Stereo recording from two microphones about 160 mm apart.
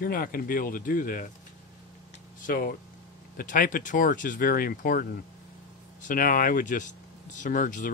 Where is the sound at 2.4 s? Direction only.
60° left (ahead or behind).